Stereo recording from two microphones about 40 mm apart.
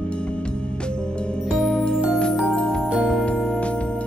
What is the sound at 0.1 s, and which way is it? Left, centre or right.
Music, left.